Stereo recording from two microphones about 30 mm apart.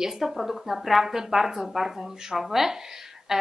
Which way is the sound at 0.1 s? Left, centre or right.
Centre.